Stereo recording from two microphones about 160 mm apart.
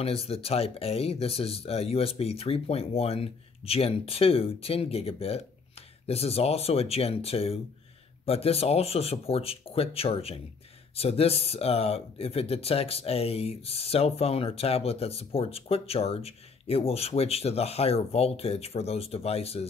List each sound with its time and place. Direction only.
0.0 s speech: 40° left (ahead or behind)